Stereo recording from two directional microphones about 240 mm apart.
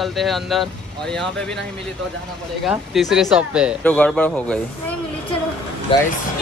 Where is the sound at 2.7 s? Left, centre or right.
Centre.